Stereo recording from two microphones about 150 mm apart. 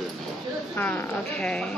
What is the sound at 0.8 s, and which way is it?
Speech, 10° left (ahead or behind).